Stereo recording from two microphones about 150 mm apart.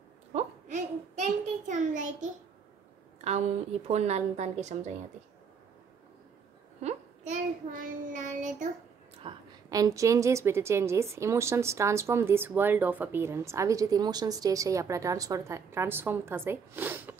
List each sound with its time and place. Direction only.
0.3 s a child's voice: 50° right (ahead or behind)
3.3 s a woman's voice: 45° right (ahead or behind)
6.8 s child singing: 50° right (ahead or behind)
9.2 s a woman's voice: 35° right (ahead or behind)
9.7 s a woman's voice: 25° right (ahead or behind)